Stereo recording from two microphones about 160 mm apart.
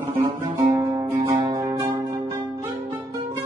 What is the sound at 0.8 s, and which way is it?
Music, 20° right (ahead or behind).